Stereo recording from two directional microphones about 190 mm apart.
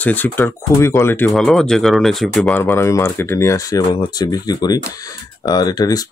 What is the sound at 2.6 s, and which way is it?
Speech, 15° left (ahead or behind).